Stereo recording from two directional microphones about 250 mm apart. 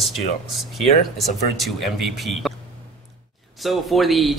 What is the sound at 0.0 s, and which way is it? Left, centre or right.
Speech, centre.